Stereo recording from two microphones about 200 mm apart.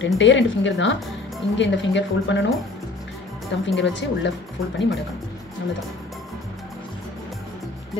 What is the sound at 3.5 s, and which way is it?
Speech, 65° left (ahead or behind).